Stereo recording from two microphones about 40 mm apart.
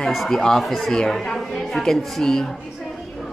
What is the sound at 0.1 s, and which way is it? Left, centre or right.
A woman's voice, centre.